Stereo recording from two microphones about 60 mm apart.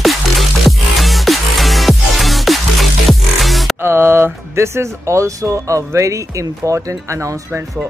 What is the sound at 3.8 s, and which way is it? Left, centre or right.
Speech, right.